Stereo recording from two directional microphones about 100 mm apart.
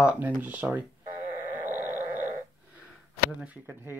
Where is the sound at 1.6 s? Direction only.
20° right (ahead or behind).